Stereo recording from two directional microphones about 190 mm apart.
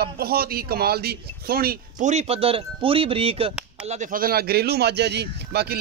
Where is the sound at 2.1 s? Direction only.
35° right (ahead or behind).